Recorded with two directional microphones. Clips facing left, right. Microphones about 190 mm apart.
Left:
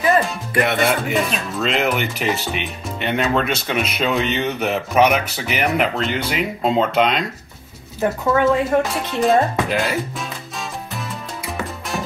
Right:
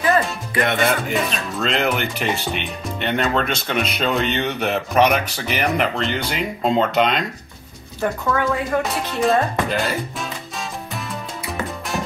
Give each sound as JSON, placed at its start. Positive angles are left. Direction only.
{"t": 0.6, "sound": "speech", "side_deg": 5}
{"t": 8.0, "sound": "speech", "side_deg": 20}
{"t": 8.9, "sound": "speech", "side_deg": 0}
{"t": 11.4, "sound": "music", "side_deg": 0}